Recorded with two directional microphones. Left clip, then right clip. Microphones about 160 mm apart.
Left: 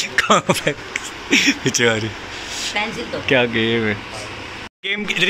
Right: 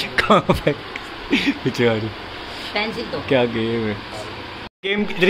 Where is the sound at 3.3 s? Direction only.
Centre (ahead or behind).